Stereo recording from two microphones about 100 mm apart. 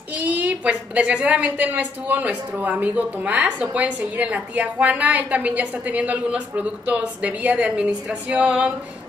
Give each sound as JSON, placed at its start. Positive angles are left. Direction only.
{"t": 0.1, "sound": "a woman's voice", "side_deg": -15}